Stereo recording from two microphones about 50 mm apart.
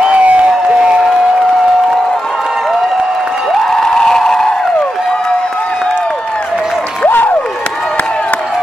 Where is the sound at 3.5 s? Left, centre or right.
Centre.